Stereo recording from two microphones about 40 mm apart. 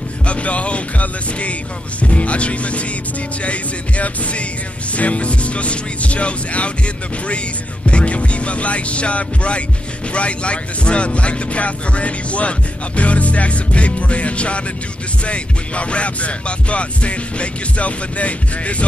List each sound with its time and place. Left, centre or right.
0.3 s speech: left
7.9 s speech: left